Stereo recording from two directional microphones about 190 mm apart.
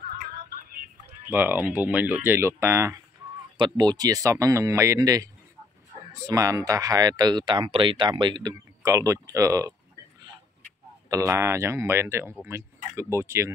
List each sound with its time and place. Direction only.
1.2 s speech: 10° right (ahead or behind)
11.1 s speech: 15° right (ahead or behind)